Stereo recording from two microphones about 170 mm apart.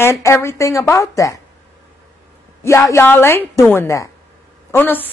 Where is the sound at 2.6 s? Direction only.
15° left (ahead or behind).